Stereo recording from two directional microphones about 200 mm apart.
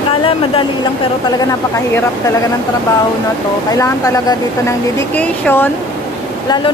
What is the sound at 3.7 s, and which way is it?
A woman's voice, 15° left (ahead or behind).